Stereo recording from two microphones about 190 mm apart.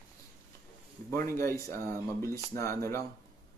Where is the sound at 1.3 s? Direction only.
15° left (ahead or behind).